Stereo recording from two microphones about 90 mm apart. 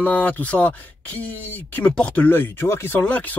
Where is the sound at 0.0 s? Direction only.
15° left (ahead or behind).